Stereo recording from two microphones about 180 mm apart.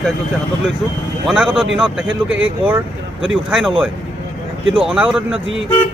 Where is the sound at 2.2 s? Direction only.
90° right.